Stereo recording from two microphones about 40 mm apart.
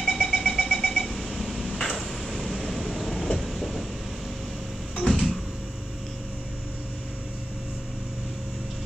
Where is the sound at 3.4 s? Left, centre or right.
Centre.